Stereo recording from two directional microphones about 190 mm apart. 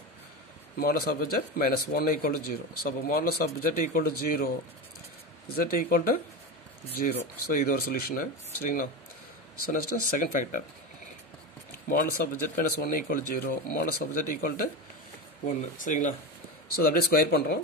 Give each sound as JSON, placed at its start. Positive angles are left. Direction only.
{"t": 0.7, "sound": "speech", "side_deg": 50}
{"t": 3.4, "sound": "speech", "side_deg": 40}
{"t": 5.6, "sound": "speech", "side_deg": 50}
{"t": 11.9, "sound": "speech", "side_deg": 45}